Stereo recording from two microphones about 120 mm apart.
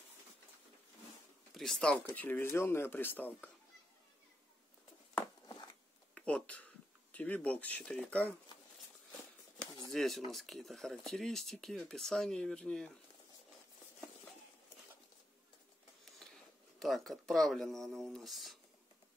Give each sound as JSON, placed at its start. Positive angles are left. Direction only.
{"t": 1.5, "sound": "speech", "side_deg": 0}
{"t": 5.5, "sound": "a sound", "side_deg": 35}
{"t": 6.1, "sound": "speech", "side_deg": 10}
{"t": 9.8, "sound": "speech", "side_deg": 0}
{"t": 16.8, "sound": "speech", "side_deg": 0}